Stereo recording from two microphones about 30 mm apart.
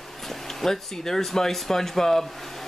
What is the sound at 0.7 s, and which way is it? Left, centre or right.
Speech, centre.